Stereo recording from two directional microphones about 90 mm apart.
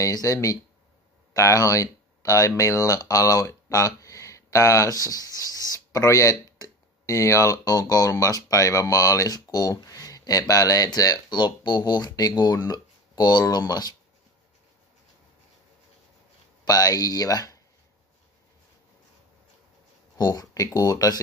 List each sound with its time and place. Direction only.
0.0 s speech: 35° left (ahead or behind)
16.6 s speech: 45° left (ahead or behind)
20.2 s speech: 50° left (ahead or behind)